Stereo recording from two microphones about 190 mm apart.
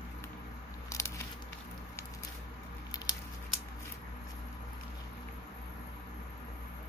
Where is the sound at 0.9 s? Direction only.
15° left (ahead or behind).